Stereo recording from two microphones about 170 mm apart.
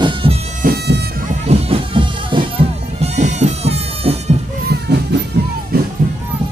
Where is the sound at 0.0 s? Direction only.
30° right (ahead or behind).